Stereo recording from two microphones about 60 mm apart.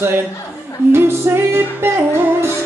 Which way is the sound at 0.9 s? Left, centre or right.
Right.